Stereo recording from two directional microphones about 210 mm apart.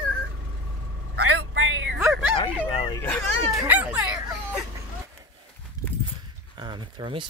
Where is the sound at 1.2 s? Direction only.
90° right; by 2.0 s 65° right (ahead or behind).